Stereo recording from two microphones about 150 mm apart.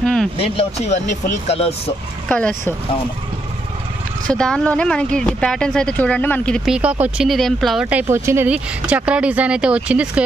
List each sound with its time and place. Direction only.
0.0 s a sound: 5° left (ahead or behind)
0.4 s speech: 45° left (ahead or behind)
2.2 s speech: 10° left (ahead or behind)
4.3 s speech: 5° left (ahead or behind)
6.7 s speech: 10° right (ahead or behind)